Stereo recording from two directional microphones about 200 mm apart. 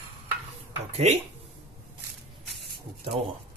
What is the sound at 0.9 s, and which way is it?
Speech, 30° right (ahead or behind).